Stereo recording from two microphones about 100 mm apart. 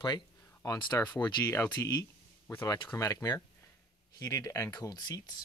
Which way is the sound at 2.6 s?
50° left (ahead or behind).